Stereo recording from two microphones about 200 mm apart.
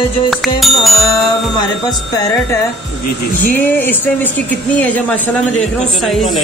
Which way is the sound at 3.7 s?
10° left (ahead or behind).